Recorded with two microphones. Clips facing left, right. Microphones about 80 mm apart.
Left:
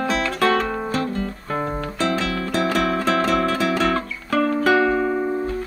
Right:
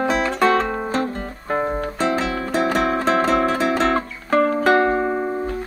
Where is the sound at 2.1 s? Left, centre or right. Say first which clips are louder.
Right 1 dB; centre.